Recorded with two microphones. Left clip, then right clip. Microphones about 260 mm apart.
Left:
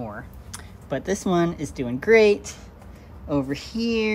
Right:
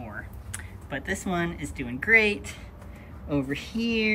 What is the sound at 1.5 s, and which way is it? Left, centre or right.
Speech, centre.